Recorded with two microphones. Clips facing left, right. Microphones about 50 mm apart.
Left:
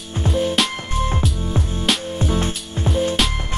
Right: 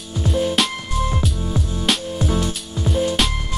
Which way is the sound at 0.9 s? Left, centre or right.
Left.